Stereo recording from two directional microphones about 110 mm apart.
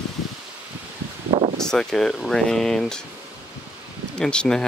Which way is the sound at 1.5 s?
5° left (ahead or behind).